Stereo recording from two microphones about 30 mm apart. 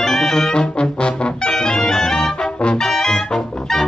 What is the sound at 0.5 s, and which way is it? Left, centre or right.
Brass instrument, left.